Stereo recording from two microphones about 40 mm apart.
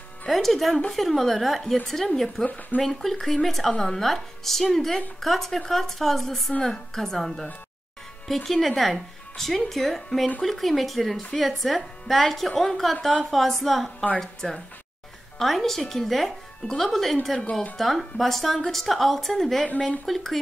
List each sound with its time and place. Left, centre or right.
0.3 s speech: centre
2.4 s speech: left
2.8 s speech: centre
8.5 s speech: centre